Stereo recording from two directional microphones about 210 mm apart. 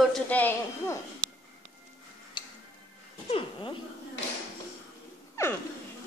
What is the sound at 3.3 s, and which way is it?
Speech, 25° left (ahead or behind).